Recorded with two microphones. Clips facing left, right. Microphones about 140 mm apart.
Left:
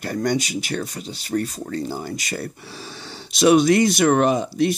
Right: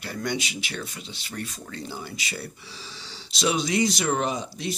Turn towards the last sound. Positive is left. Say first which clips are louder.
# left 10 dB
turn(degrees=55)  # may be behind; listen again after turning